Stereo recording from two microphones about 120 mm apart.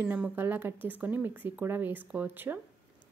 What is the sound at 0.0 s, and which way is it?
Speech, 15° right (ahead or behind).